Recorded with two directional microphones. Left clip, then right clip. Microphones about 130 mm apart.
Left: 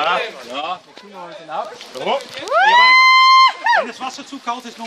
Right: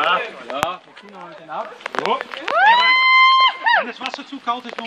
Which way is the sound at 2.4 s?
20° left (ahead or behind).